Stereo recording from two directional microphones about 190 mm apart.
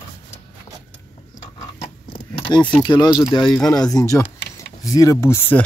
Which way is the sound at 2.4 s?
25° left (ahead or behind).